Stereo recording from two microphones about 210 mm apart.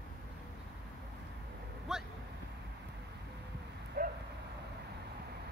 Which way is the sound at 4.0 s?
45° right (ahead or behind).